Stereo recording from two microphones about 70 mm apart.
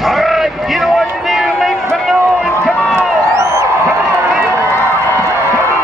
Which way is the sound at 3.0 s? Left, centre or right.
Right.